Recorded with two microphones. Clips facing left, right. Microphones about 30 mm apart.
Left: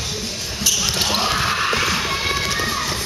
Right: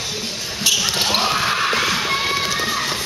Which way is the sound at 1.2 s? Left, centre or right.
Centre.